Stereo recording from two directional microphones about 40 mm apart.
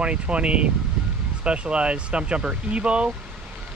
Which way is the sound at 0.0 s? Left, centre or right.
Right.